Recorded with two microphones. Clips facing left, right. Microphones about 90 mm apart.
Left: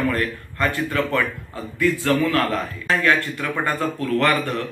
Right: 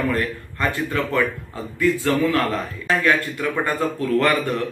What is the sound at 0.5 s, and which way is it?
Speech, 20° right (ahead or behind).